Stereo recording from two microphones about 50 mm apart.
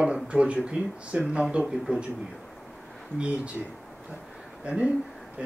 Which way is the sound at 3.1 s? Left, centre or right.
Right.